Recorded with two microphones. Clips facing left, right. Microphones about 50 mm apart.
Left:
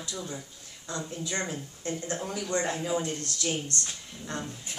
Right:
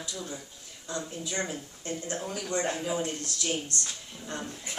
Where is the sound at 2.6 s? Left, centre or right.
Centre.